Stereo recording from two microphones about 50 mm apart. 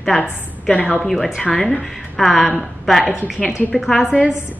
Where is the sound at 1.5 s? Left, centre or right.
Centre.